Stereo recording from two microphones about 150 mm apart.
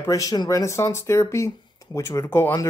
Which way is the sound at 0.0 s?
25° left (ahead or behind).